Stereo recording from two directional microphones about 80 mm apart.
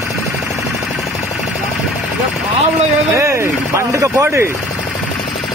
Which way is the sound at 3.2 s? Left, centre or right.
Right.